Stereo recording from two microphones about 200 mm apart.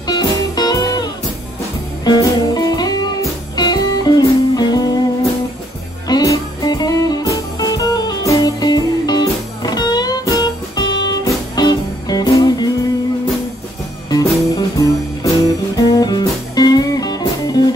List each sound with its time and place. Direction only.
0.0 s music: 20° left (ahead or behind)
2.0 s music: 20° left (ahead or behind)
6.0 s music: 20° left (ahead or behind)
14.1 s music: 15° left (ahead or behind)